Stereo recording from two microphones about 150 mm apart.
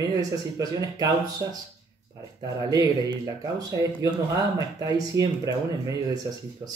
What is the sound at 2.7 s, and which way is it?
Speech, 25° right (ahead or behind).